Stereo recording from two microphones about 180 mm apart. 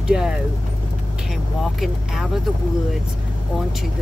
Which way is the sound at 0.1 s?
5° right (ahead or behind).